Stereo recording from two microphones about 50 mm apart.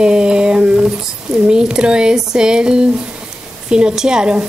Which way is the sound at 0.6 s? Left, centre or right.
Right.